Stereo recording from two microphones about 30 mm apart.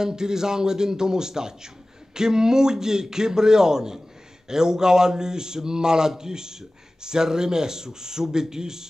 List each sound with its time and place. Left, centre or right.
0.0 s speech: right